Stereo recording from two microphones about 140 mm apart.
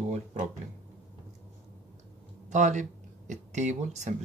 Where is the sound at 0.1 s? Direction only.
55° right (ahead or behind).